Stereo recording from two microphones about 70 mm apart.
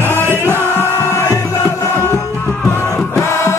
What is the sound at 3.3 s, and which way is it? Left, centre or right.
Music, left.